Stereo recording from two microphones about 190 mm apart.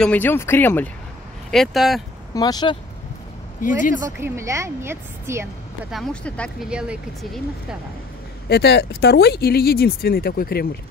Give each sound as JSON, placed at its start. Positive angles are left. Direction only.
{"t": 0.0, "sound": "speech", "side_deg": 10}
{"t": 2.3, "sound": "speech", "side_deg": 20}
{"t": 3.6, "sound": "speech", "side_deg": 45}
{"t": 4.2, "sound": "speech", "side_deg": -15}
{"t": 5.9, "sound": "speech", "side_deg": 5}
{"t": 6.7, "sound": "speech", "side_deg": -5}
{"t": 8.5, "sound": "speech", "side_deg": 60}